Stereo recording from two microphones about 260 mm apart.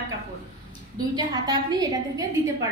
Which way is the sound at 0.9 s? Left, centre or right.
Centre.